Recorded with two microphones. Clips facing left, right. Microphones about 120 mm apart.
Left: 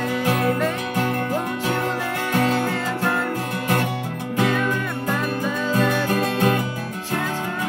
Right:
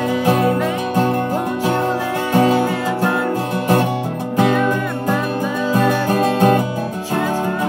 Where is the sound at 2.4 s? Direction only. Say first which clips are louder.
Right 6 dB; 10° right (ahead or behind).